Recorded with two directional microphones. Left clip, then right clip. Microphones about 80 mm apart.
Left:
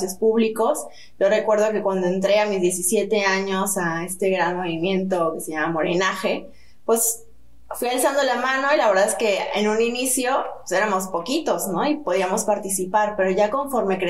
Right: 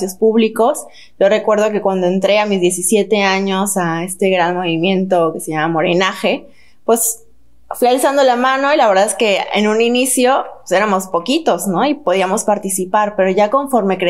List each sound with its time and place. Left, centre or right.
0.0 s speech: right
7.6 s speech: right